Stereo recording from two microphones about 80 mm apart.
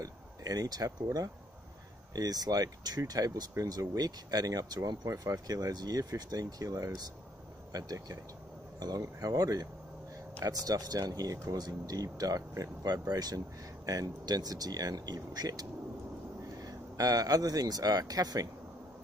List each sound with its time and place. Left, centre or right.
0.0 s speech: right
16.6 s speech: right